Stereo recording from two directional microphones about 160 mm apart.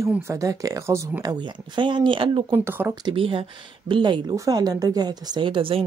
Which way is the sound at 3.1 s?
35° right (ahead or behind).